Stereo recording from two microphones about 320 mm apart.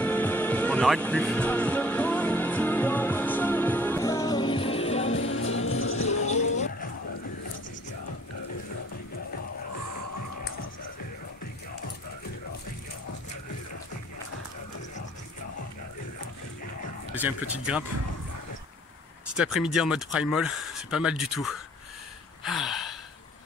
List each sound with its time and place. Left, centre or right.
0.0 s music: centre
5.1 s music: left
17.2 s speech: centre
19.3 s speech: centre
22.4 s gasp: centre